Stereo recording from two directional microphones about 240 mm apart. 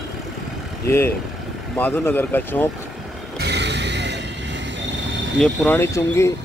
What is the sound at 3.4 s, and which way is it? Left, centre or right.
Music, right.